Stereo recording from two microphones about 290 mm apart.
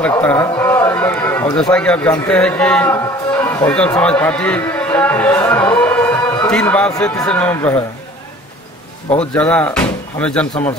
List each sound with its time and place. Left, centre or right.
0.0 s a man's voice: centre
9.3 s speech: centre